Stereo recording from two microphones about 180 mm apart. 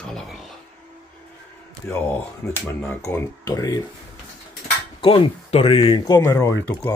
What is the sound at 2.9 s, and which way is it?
Speech, 15° left (ahead or behind).